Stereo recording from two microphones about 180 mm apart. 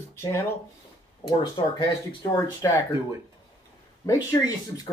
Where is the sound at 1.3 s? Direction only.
25° left (ahead or behind).